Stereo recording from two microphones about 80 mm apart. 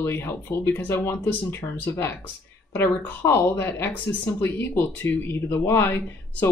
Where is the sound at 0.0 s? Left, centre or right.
Left.